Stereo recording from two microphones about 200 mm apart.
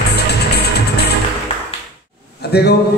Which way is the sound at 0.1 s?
55° left (ahead or behind).